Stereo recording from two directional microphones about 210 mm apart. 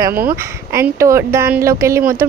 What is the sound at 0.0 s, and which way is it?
Speech, 10° right (ahead or behind).